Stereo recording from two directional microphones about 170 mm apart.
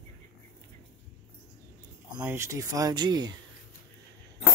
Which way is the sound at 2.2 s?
15° right (ahead or behind).